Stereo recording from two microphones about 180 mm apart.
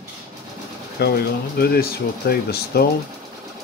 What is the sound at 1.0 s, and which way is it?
Speech, 60° left (ahead or behind).